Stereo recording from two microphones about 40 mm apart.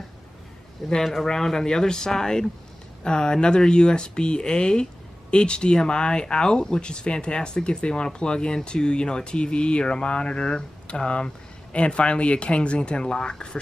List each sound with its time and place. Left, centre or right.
1.0 s speech: centre
1.3 s speech: centre